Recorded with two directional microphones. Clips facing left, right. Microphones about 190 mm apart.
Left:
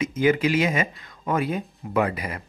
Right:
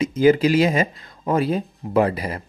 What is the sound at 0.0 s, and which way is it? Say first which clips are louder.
Speech: right 5 dB; 35° right (ahead or behind).